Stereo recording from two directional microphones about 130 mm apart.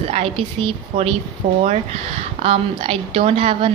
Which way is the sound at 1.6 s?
60° right (ahead or behind).